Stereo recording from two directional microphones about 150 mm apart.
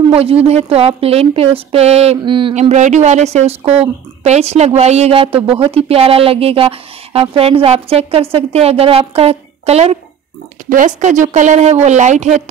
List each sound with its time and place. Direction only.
0.1 s a woman's voice: 40° right (ahead or behind)
2.7 s a woman's voice: 50° right (ahead or behind)
10.7 s speech: 60° right (ahead or behind)